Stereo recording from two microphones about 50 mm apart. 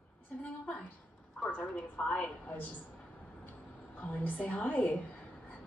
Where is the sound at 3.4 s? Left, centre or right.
Left.